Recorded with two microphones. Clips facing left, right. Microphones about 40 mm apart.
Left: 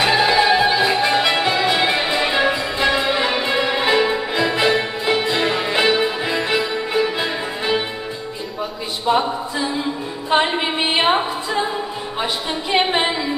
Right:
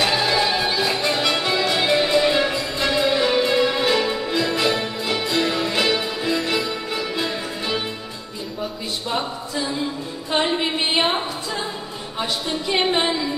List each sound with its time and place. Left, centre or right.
0.0 s music: centre
9.0 s a sound: centre
12.2 s speech: left